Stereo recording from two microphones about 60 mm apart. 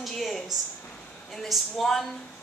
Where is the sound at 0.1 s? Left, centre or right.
Centre.